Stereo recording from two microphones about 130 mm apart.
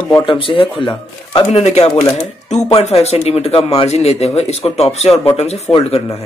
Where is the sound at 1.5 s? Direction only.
55° left (ahead or behind).